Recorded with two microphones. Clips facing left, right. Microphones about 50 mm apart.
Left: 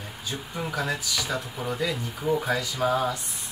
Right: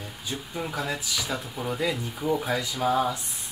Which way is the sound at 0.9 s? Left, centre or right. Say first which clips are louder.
Left 1 dB; centre.